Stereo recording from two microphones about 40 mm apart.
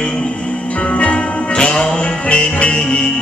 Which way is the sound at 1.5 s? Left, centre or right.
Left.